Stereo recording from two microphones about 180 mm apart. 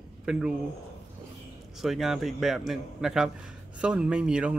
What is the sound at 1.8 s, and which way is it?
Speech, centre (ahead or behind).